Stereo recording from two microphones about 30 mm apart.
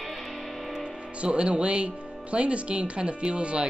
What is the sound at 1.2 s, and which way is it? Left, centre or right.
Speech, right.